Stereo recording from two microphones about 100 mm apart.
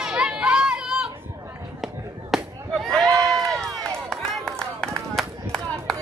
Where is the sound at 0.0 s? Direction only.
10° right (ahead or behind).